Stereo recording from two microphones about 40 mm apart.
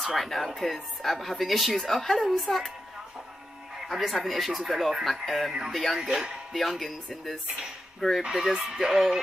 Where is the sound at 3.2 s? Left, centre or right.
Centre.